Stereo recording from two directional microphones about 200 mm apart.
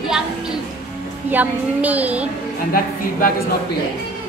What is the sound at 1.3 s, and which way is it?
Speech, 10° right (ahead or behind).